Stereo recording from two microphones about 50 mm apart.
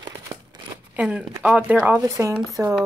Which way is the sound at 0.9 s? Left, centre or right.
Right.